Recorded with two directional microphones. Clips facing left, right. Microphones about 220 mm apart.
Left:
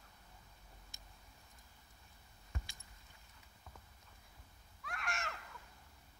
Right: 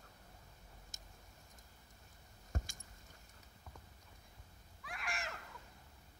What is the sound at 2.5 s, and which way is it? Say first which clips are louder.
Keys jangling: right 6 dB; 45° right (ahead or behind).